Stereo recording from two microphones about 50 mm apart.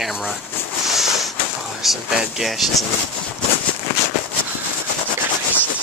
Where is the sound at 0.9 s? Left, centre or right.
Centre.